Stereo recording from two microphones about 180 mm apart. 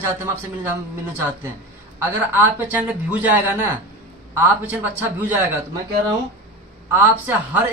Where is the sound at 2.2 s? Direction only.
10° right (ahead or behind).